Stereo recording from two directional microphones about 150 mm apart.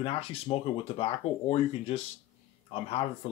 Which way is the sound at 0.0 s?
40° left (ahead or behind).